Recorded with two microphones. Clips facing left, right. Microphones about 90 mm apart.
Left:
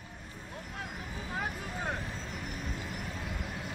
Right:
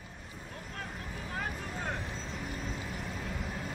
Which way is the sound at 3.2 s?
Centre (ahead or behind).